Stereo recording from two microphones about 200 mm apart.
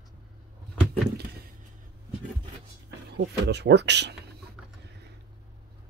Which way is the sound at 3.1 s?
60° right (ahead or behind).